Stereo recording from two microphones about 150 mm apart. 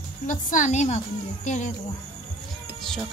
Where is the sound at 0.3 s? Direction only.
55° left (ahead or behind).